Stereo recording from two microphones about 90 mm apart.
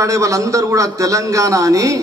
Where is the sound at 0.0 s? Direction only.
35° right (ahead or behind).